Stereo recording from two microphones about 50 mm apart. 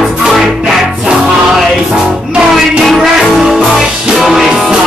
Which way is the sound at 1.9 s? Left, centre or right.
Centre.